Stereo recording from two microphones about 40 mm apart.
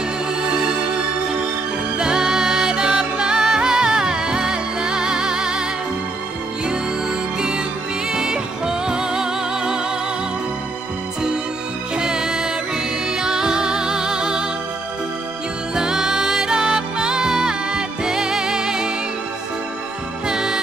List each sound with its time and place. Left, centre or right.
0.4 s music: centre
2.0 s music: centre
7.3 s music: centre
12.0 s music: centre
15.7 s music: centre
20.2 s music: centre